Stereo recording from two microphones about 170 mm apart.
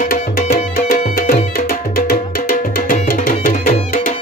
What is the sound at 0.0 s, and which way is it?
Music, 60° left (ahead or behind).